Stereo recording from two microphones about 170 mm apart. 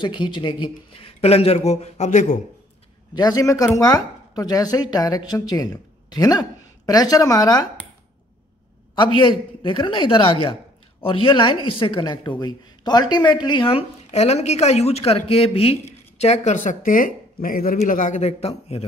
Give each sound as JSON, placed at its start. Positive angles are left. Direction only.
{"t": 0.0, "sound": "a woman's voice", "side_deg": 30}
{"t": 3.2, "sound": "speech", "side_deg": 20}
{"t": 8.9, "sound": "a woman's voice", "side_deg": 30}